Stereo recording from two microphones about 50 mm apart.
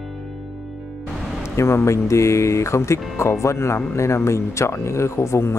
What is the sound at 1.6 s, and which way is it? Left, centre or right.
Speech, left.